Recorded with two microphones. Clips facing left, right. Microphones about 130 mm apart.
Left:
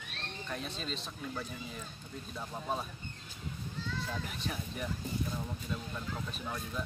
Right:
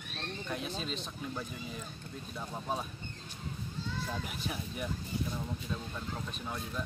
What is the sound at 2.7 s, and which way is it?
Speech, centre (ahead or behind).